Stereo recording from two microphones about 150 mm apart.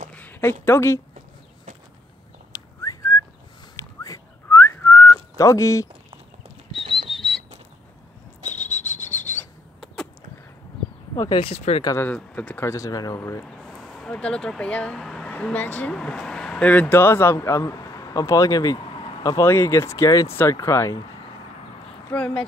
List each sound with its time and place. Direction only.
0.1 s a sound: 10° left (ahead or behind)
2.5 s whistling: 25° left (ahead or behind)
6.8 s a sound: 35° right (ahead or behind)
7.1 s a sound: centre (ahead or behind)
11.1 s speech: 30° left (ahead or behind)
11.8 s speech: 20° left (ahead or behind)
12.1 s speech: 10° left (ahead or behind)
13.6 s speech: centre (ahead or behind); by 21.0 s 20° left (ahead or behind)
22.1 s speech: 5° left (ahead or behind)